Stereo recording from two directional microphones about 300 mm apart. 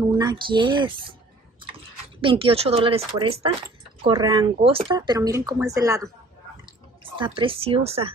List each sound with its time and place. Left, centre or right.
0.2 s speech: centre
2.2 s speech: centre
6.6 s drip: centre